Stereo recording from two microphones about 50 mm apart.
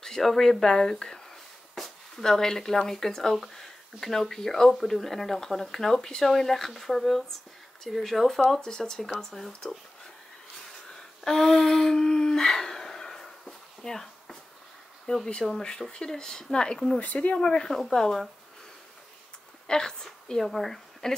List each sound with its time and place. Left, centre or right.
0.0 s speech: centre
10.9 s a sound: centre
15.1 s speech: left
17.0 s speech: left
17.4 s speech: centre
19.7 s a woman's voice: centre